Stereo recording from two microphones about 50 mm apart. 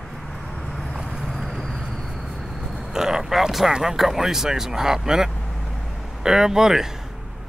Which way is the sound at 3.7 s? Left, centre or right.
Centre.